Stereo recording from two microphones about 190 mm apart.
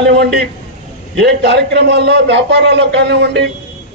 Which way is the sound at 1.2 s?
60° right (ahead or behind).